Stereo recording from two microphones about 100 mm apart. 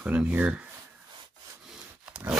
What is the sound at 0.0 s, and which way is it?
Speech, 15° right (ahead or behind).